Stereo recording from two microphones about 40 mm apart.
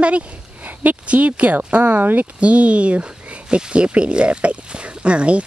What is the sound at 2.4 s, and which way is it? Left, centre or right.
Speech, right.